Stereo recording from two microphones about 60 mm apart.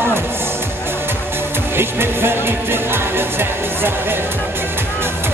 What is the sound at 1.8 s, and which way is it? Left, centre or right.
Speech, right.